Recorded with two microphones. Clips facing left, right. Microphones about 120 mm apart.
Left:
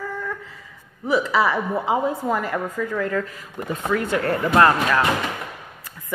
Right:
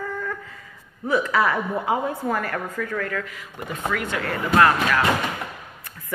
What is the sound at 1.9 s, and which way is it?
A woman's voice, 20° left (ahead or behind).